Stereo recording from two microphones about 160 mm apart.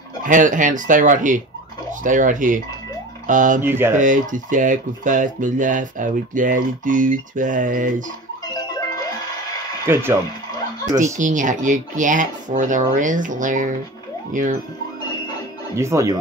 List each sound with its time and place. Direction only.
0.3 s speech: 55° right (ahead or behind)
3.6 s speech: 15° right (ahead or behind)
4.0 s speech: 55° right (ahead or behind)
8.7 s music: 25° left (ahead or behind)
11.1 s speech: 50° right (ahead or behind)
15.7 s speech: 15° right (ahead or behind)